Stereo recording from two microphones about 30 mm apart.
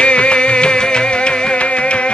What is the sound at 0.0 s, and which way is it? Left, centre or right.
Music, left.